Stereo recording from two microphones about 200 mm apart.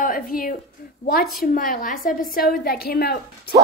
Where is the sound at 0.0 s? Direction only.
45° left (ahead or behind).